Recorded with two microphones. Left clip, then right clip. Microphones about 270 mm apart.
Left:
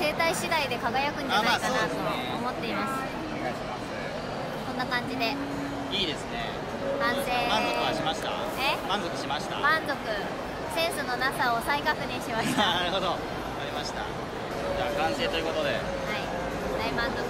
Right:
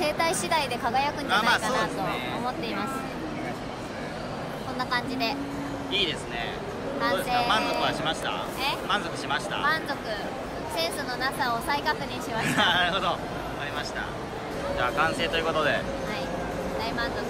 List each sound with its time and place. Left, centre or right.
0.0 s vehicle: centre
1.3 s a woman's voice: centre
4.7 s a sound: right
7.0 s speech: centre
7.5 s a woman's voice: centre
10.8 s a woman's voice: centre
14.8 s a woman's voice: centre